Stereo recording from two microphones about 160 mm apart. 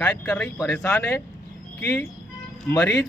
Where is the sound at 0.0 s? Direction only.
10° left (ahead or behind).